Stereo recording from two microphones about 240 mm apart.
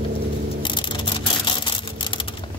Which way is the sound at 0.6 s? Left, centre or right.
Centre.